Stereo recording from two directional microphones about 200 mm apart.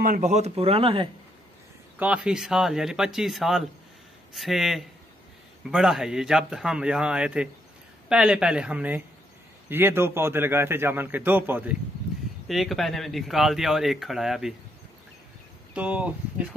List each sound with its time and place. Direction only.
0.0 s speech: 40° right (ahead or behind)
2.0 s a man's voice: 5° right (ahead or behind)
15.7 s a man's voice: 5° right (ahead or behind)